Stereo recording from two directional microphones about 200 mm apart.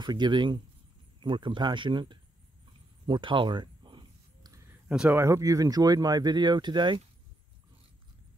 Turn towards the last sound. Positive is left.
turn(degrees=-25)  # may be behind; listen again after turning